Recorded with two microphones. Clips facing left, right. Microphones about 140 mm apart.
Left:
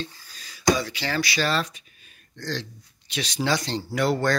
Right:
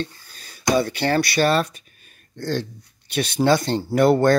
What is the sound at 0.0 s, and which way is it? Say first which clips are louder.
Speech: right 5 dB; 55° right (ahead or behind).